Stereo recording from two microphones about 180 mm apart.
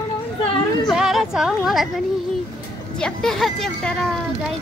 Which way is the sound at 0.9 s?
Centre (ahead or behind).